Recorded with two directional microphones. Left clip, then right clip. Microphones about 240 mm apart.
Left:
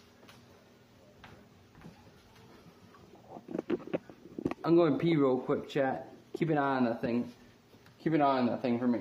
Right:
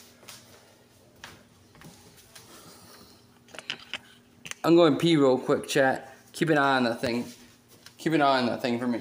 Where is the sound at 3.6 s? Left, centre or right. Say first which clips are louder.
Left 1 dB; right.